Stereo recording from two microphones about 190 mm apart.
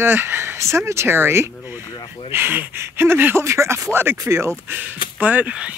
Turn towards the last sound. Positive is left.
turn(degrees=-5)  # may be behind; listen again after turning